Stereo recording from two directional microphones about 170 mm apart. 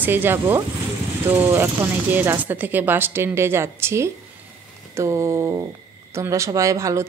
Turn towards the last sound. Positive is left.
turn(degrees=-20)  # may be behind; listen again after turning